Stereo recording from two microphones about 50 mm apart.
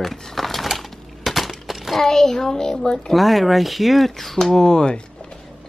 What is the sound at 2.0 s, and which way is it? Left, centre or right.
A child's voice, centre.